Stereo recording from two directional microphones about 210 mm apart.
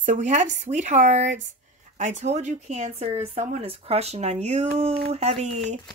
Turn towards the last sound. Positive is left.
turn(degrees=-30)  # may be behind; listen again after turning